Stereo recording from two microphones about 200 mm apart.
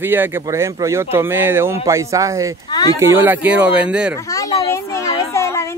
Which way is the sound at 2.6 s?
20° left (ahead or behind).